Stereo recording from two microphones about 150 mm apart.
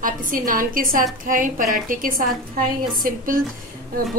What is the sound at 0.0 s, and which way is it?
A woman's voice, 65° right (ahead or behind).